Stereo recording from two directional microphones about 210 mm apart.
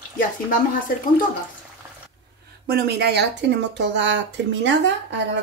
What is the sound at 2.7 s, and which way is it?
Speech, 50° right (ahead or behind).